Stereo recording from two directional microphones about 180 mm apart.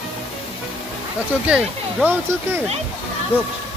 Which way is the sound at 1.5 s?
10° right (ahead or behind).